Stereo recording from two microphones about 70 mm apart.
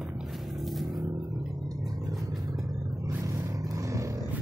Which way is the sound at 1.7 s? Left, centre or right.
Right.